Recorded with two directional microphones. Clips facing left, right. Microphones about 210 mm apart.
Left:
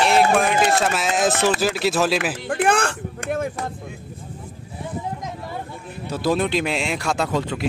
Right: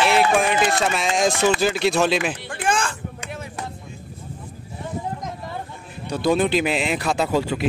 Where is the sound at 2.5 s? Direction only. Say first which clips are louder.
Left 4 dB; 60° left (ahead or behind).